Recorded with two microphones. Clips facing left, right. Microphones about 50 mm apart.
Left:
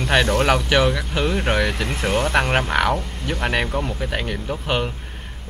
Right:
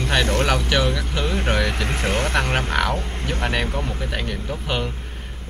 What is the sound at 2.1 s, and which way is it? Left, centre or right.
Speech, right.